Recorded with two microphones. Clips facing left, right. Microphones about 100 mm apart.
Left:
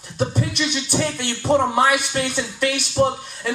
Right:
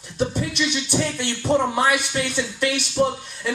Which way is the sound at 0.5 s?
30° left (ahead or behind).